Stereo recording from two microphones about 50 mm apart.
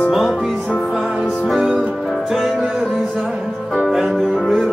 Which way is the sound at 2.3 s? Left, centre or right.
Centre.